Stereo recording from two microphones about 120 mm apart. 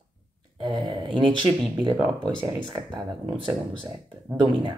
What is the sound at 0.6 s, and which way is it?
Speech, 40° right (ahead or behind).